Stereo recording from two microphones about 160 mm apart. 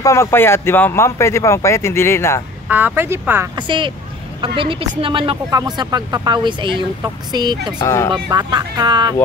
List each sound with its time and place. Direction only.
0.0 s speech: 20° left (ahead or behind)
2.7 s speech: 10° right (ahead or behind)
3.5 s a woman's voice: 30° right (ahead or behind)
7.8 s speech: 20° left (ahead or behind)
8.1 s speech: 25° right (ahead or behind)